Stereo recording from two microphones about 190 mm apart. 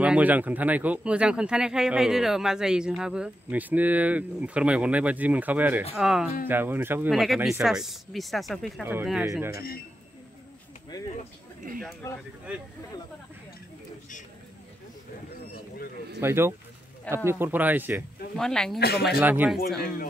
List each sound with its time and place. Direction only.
0.0 s speech: 5° right (ahead or behind)
7.1 s speech: centre (ahead or behind)
16.2 s speech: 10° right (ahead or behind)
18.3 s speech: 5° left (ahead or behind)
18.8 s speech: 55° left (ahead or behind)
19.0 s speech: 5° right (ahead or behind)